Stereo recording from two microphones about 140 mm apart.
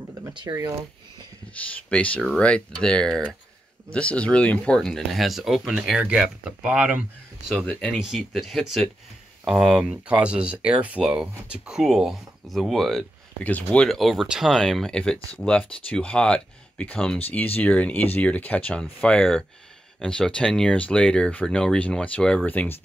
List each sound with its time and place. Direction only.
0.3 s speech: 35° right (ahead or behind)
1.9 s speech: 10° left (ahead or behind)